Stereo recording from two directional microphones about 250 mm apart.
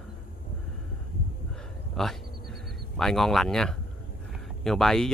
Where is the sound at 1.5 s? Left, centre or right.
Centre.